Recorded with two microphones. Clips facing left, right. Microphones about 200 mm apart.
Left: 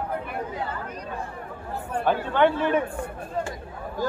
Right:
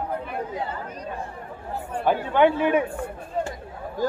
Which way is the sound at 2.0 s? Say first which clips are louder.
Right 2 dB; 10° right (ahead or behind).